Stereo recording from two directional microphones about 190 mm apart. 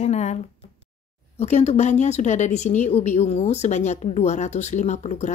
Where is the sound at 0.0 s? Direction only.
35° left (ahead or behind).